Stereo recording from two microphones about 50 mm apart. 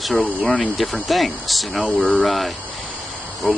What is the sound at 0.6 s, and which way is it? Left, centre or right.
Speech, centre.